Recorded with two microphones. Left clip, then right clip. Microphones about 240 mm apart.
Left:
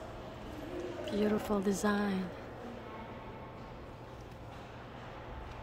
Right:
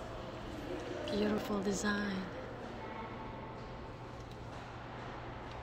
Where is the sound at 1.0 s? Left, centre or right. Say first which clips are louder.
Left 2 dB; centre.